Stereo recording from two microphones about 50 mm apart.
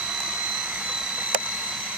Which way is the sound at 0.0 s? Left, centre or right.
Centre.